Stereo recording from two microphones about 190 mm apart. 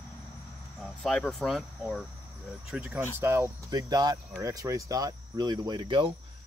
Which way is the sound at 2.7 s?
5° right (ahead or behind).